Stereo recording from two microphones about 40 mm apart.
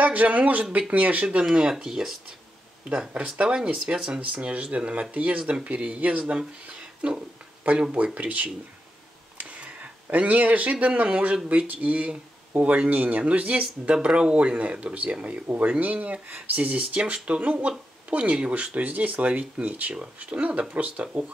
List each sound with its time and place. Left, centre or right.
0.0 s speech: right
1.7 s speech: centre
2.9 s speech: right
3.4 s speech: right
6.3 s speech: right
15.8 s speech: right
17.0 s speech: right